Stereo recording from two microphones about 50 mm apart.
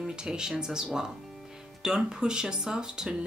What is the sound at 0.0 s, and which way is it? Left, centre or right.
Speech, centre.